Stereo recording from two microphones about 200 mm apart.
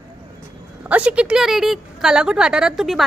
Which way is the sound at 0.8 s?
5° right (ahead or behind).